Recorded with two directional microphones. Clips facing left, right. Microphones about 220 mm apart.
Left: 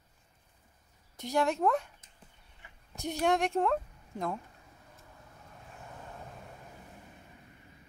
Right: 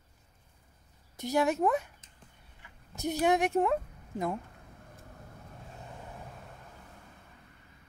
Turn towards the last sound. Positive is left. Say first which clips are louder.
# left 2 dB
turn(degrees=15)  # may be behind; listen again after turning